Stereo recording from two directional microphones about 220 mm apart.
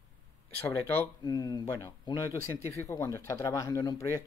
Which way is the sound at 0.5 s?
10° left (ahead or behind).